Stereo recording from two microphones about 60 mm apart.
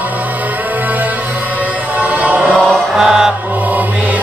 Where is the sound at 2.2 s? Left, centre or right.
Right.